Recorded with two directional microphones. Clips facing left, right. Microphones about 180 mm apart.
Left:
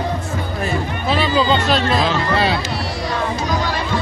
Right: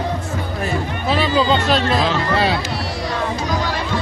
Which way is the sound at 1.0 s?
40° right (ahead or behind).